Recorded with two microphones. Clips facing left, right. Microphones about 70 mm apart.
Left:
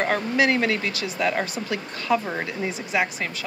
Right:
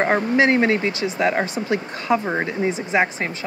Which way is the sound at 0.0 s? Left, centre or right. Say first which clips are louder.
Right 4 dB; right.